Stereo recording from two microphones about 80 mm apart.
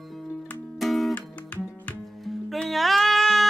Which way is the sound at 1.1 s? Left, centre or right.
Centre.